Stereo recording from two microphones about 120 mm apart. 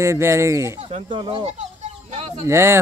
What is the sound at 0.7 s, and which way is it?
Speech, 50° right (ahead or behind).